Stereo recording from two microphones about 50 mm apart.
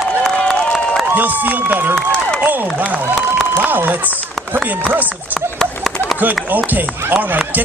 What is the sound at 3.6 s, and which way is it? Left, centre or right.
Speech, right.